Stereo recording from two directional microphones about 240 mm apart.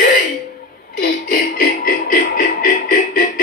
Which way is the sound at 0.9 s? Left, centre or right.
Left.